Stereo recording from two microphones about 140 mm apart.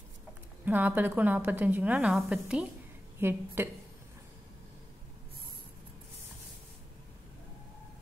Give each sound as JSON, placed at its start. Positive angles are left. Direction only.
{"t": 0.7, "sound": "a woman's voice", "side_deg": -10}